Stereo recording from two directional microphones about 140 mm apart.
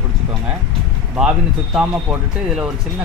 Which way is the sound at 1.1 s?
5° right (ahead or behind).